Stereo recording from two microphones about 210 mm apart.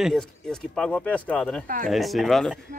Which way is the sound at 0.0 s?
Centre (ahead or behind).